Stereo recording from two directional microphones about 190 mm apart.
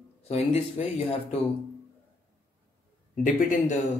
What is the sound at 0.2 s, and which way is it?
Speech, 35° left (ahead or behind).